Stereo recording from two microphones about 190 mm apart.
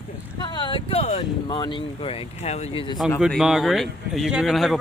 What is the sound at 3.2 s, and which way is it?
Speech, 5° right (ahead or behind).